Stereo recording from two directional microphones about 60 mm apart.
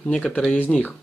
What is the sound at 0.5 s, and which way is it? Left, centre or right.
Speech, left.